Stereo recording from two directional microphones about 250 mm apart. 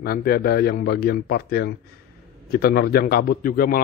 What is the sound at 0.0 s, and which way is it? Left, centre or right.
A man's voice, left.